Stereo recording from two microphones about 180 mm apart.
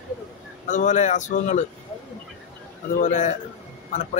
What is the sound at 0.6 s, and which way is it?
Speech, 45° left (ahead or behind).